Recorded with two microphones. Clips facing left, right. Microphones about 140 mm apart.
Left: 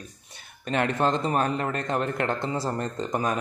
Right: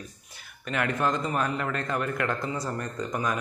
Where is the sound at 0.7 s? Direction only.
30° left (ahead or behind).